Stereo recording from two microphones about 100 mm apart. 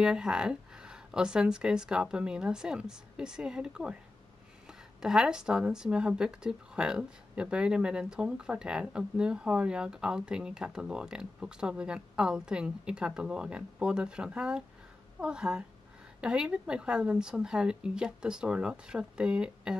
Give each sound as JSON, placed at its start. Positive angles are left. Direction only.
{"t": 0.0, "sound": "speech", "side_deg": -5}